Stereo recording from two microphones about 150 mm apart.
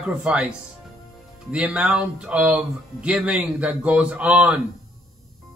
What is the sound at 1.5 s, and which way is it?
Speech, 10° right (ahead or behind).